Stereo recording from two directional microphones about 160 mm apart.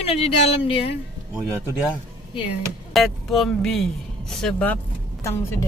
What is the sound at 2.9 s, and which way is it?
Speech, centre (ahead or behind).